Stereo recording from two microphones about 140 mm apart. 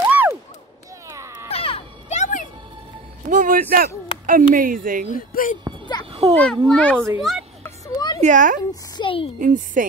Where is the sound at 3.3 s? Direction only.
75° right (ahead or behind).